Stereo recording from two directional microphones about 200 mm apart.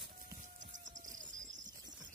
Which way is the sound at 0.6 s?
40° right (ahead or behind).